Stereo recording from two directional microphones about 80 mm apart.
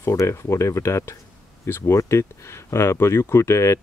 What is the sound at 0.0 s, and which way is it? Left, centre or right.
Speech, left.